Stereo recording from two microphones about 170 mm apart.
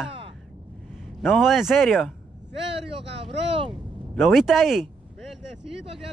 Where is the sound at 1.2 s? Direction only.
Centre (ahead or behind).